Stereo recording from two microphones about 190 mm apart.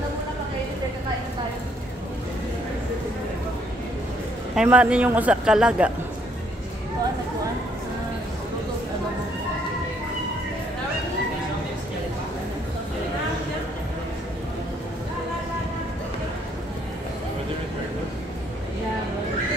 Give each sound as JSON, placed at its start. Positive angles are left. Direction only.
{"t": 4.6, "sound": "a man's voice", "side_deg": -5}